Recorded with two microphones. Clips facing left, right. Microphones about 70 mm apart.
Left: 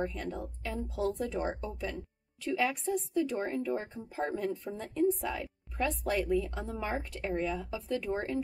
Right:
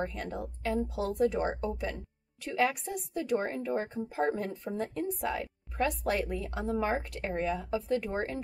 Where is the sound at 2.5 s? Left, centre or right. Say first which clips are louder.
Right 1 dB; right.